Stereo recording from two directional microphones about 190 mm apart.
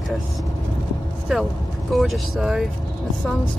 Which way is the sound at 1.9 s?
Centre (ahead or behind).